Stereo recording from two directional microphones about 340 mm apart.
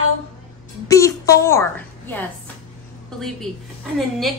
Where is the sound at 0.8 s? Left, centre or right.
Centre.